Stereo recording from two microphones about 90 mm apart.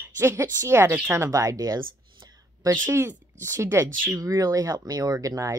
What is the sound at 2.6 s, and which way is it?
Speech, 25° right (ahead or behind).